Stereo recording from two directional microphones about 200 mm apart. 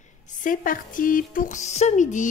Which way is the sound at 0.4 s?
40° left (ahead or behind).